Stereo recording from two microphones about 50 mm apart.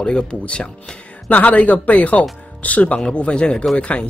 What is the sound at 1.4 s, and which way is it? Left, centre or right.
A man's voice, left.